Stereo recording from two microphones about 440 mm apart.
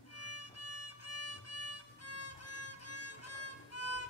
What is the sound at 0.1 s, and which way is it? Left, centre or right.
Music, left.